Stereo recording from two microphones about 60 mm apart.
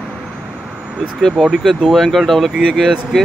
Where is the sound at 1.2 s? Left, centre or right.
Centre.